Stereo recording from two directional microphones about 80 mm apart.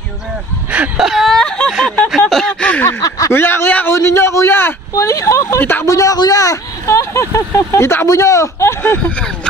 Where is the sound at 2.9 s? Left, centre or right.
Left.